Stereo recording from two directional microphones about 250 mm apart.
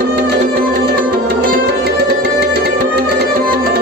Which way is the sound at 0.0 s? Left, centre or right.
Right.